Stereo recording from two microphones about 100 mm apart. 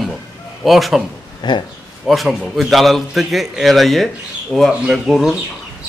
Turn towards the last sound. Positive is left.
turn(degrees=0)  # may be behind; listen again after turning